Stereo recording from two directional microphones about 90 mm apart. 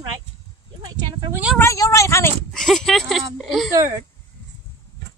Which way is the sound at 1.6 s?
35° left (ahead or behind).